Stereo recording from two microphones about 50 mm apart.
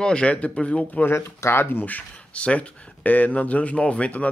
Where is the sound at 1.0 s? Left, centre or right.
Left.